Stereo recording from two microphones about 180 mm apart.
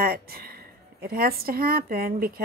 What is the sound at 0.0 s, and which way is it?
A woman's voice, 55° right (ahead or behind).